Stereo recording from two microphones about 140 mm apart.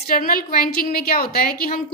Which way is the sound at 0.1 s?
90° left.